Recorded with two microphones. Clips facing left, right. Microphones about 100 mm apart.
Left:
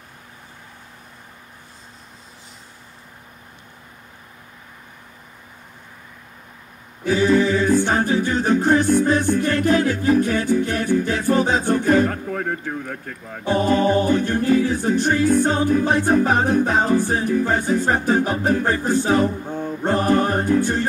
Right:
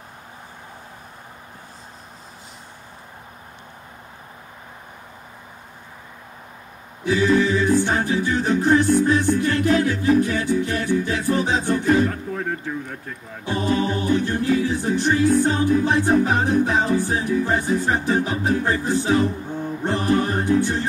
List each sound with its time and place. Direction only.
7.1 s a capella: 50° left (ahead or behind)